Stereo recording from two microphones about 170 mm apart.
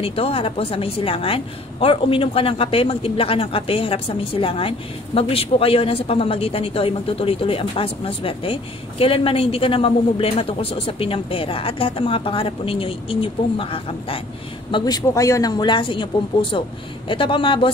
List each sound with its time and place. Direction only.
0.0 s a woman's voice: 35° left (ahead or behind)
14.7 s speech: 25° left (ahead or behind)